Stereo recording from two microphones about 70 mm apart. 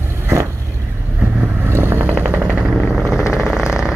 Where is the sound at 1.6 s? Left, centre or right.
Right.